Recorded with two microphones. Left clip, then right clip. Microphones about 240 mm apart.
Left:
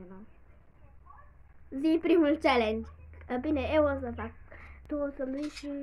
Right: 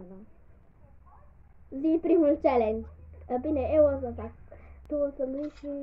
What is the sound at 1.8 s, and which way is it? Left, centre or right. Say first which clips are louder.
A woman's voice: right 1 dB; centre.